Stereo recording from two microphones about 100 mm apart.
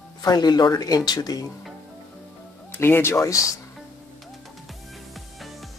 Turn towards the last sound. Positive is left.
turn(degrees=0)  # may be behind; listen again after turning